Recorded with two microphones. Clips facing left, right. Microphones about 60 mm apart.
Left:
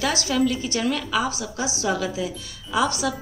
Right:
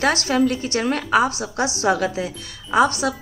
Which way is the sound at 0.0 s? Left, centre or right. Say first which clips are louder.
Right 4 dB; right.